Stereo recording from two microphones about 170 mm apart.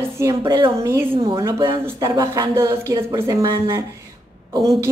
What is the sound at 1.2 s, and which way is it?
A woman's voice, 20° right (ahead or behind).